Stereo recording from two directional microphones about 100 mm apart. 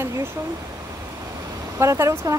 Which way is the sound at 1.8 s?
30° right (ahead or behind).